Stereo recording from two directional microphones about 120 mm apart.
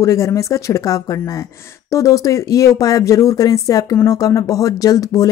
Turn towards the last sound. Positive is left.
turn(degrees=30)  # may be behind; listen again after turning